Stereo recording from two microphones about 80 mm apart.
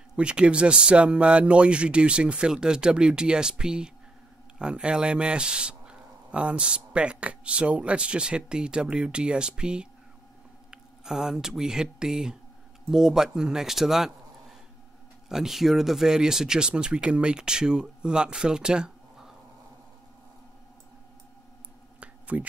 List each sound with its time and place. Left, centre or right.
0.1 s speech: centre
15.2 s speech: centre
22.0 s a sound: centre